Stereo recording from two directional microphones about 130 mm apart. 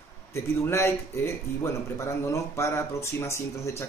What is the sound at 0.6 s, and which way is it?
Speech, 20° left (ahead or behind).